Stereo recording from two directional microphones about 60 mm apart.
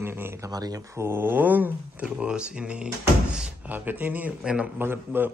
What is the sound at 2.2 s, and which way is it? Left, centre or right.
Speech, centre.